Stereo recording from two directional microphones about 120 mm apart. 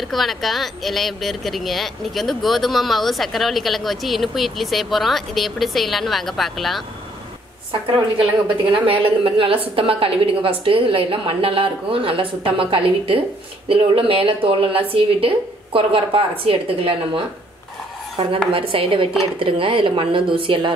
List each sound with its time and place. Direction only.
0.1 s speech: centre (ahead or behind)
8.7 s a woman's voice: 50° right (ahead or behind)